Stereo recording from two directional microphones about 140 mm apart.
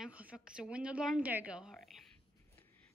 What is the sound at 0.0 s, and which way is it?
A woman's voice, 10° right (ahead or behind).